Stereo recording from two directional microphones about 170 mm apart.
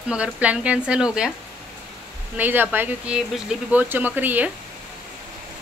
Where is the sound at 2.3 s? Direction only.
10° right (ahead or behind).